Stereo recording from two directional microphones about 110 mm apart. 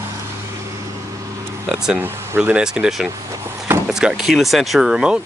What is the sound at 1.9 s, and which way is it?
Speech, 20° right (ahead or behind).